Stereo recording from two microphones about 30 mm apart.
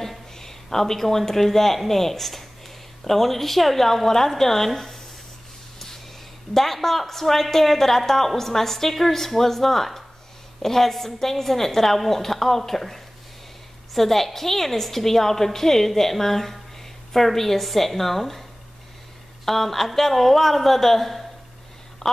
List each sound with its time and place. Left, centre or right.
0.4 s a woman's voice: centre
6.5 s a woman's voice: centre
19.4 s speech: centre
22.0 s telephone: centre